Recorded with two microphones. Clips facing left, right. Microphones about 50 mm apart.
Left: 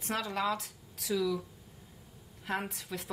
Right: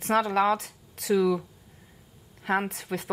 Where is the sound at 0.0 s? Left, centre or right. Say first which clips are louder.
Right 10 dB; right.